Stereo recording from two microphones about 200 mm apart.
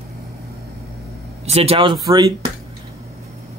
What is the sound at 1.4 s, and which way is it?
Speech, 30° right (ahead or behind).